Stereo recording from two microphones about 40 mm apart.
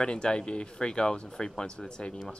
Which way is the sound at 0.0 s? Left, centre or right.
Left.